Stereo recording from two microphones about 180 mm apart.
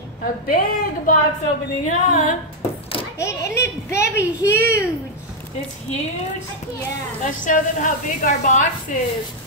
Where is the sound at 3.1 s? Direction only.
15° left (ahead or behind).